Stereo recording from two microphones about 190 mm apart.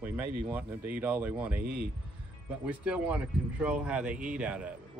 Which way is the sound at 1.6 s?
50° right (ahead or behind).